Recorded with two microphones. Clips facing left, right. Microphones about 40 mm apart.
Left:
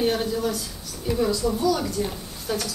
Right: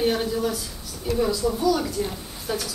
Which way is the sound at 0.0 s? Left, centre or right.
Centre.